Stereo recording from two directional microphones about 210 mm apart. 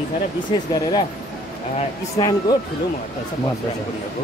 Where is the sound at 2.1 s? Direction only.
20° left (ahead or behind).